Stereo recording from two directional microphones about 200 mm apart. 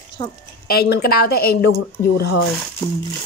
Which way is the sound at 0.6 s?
50° left (ahead or behind).